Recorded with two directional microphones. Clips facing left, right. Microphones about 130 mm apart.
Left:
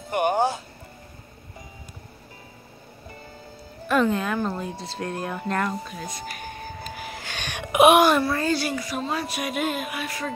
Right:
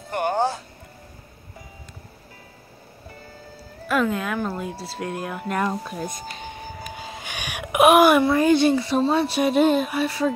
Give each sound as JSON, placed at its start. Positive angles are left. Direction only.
{"t": 0.1, "sound": "music", "side_deg": 15}
{"t": 3.8, "sound": "speech", "side_deg": -5}
{"t": 5.9, "sound": "speech", "side_deg": -50}
{"t": 6.3, "sound": "a sound", "side_deg": -20}
{"t": 8.1, "sound": "speech", "side_deg": -20}